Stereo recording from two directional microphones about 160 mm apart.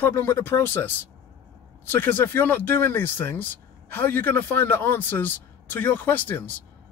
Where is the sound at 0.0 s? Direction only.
15° left (ahead or behind).